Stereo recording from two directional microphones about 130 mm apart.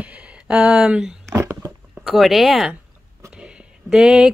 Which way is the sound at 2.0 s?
Centre (ahead or behind).